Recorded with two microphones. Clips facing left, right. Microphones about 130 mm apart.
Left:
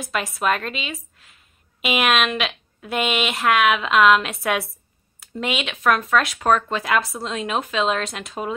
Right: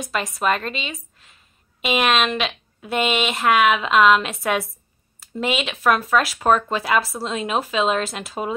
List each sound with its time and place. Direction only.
0.0 s a woman's voice: centre (ahead or behind)